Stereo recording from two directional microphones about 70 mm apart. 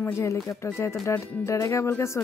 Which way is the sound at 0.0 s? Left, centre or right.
Left.